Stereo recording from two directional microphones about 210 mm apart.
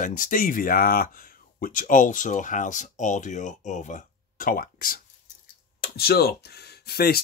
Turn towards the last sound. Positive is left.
turn(degrees=50)  # may be behind; listen again after turning